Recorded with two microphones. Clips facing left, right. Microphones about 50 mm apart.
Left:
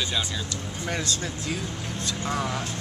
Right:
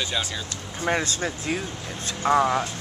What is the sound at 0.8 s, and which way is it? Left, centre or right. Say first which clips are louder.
Speech: right 6 dB; right.